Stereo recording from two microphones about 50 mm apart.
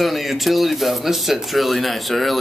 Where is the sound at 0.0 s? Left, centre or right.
Centre.